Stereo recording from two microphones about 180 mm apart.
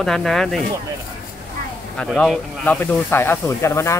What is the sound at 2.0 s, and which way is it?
Speech, 5° left (ahead or behind).